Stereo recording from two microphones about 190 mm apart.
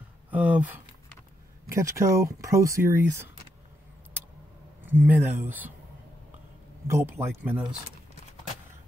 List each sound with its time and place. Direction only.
0.3 s speech: 10° right (ahead or behind)
1.7 s speech: 15° right (ahead or behind)
4.8 s speech: 10° right (ahead or behind)
6.9 s speech: 15° right (ahead or behind)